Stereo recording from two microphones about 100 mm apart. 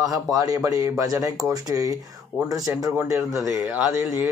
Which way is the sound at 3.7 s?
15° right (ahead or behind).